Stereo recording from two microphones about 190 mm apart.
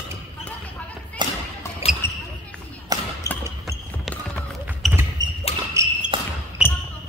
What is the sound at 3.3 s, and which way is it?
Basketball bounce, 15° left (ahead or behind).